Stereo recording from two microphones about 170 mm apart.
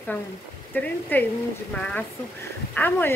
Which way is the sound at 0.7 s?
10° left (ahead or behind).